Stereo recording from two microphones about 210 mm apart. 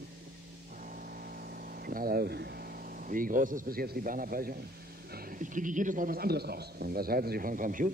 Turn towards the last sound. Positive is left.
turn(degrees=-40)  # may be behind; listen again after turning